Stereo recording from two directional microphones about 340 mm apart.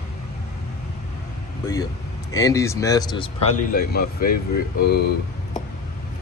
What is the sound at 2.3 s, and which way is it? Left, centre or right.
Speech, centre.